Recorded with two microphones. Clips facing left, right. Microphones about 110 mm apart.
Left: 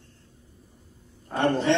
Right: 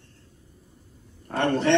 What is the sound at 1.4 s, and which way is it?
Speech, 65° right (ahead or behind).